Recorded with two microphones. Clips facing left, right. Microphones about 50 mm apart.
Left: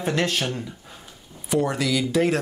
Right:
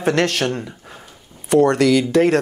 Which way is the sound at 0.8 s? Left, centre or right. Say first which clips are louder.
Right 5 dB; right.